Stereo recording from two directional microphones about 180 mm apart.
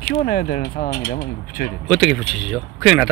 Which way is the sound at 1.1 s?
55° left (ahead or behind).